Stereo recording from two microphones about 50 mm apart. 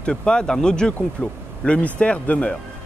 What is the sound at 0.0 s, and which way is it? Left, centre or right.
Speech, centre.